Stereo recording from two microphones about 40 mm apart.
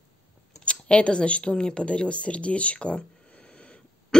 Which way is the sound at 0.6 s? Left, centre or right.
Left.